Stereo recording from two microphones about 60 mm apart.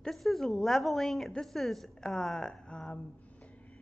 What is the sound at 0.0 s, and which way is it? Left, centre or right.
A woman's voice, centre.